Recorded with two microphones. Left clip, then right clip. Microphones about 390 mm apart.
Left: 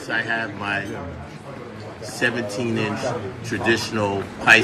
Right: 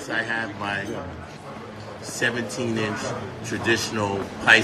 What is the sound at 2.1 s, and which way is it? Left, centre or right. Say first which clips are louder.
A man's voice: left 2 dB; centre.